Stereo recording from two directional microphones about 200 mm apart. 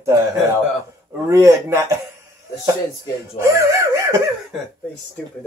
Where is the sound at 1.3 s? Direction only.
15° right (ahead or behind).